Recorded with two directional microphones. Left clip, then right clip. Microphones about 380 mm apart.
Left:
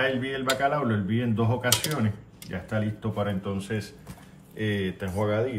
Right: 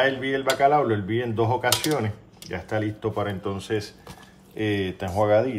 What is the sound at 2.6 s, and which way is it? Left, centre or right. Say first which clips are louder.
Speech: right 5 dB; centre.